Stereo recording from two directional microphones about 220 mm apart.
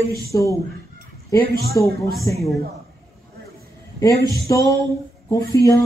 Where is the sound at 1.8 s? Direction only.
15° left (ahead or behind).